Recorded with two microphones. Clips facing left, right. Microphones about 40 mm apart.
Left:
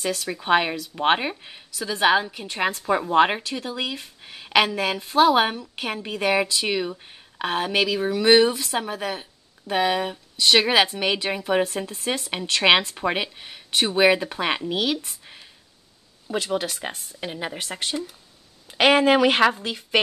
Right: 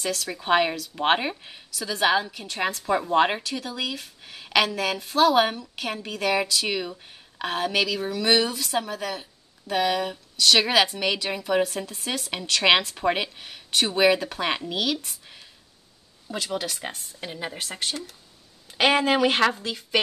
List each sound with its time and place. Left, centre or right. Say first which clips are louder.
0.0 s speech: left 2 dB; centre
15.0 s a sound: left 1 dB; centre
16.3 s speech: left 4 dB; centre
17.8 s speech: left 3 dB; centre
18.7 s speech: left 4 dB; left
19.4 s speech: left 3 dB; centre